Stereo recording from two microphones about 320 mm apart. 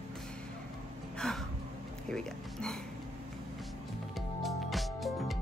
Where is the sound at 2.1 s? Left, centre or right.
Centre.